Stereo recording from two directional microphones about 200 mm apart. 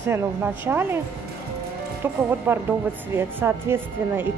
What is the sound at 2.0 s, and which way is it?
A woman's voice, 10° right (ahead or behind).